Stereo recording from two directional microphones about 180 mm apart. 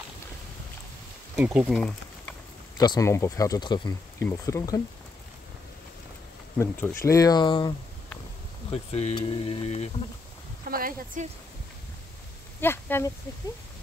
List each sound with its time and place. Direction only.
1.3 s speech: 10° right (ahead or behind)
1.7 s a sound: 5° left (ahead or behind)
2.8 s speech: 20° left (ahead or behind)
6.6 s speech: 10° left (ahead or behind)
8.7 s speech: 35° left (ahead or behind)
10.7 s a woman's voice: 50° right (ahead or behind)
12.5 s speech: 10° left (ahead or behind)